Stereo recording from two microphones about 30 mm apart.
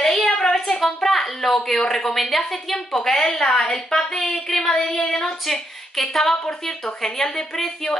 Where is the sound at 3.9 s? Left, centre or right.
Centre.